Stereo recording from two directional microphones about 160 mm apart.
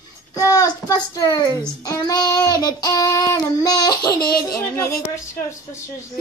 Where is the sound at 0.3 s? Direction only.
20° left (ahead or behind).